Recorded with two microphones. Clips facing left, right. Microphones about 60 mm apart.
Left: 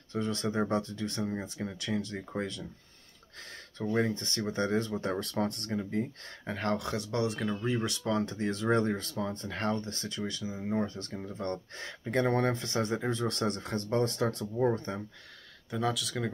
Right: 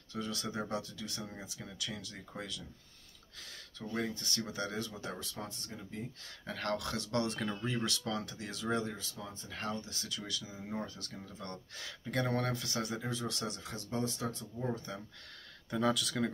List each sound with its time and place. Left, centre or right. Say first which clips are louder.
0.1 s speech: left 7 dB; left
3.7 s speech: left 8 dB; left
5.2 s speech: left 11 dB; left
6.4 s speech: left 5 dB; left
14.7 s speech: left 7 dB; left
15.7 s speech: even; centre